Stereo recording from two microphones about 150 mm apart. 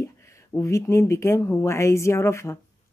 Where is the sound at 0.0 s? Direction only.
20° left (ahead or behind).